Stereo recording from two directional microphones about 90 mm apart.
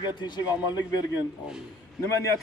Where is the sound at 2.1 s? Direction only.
35° left (ahead or behind).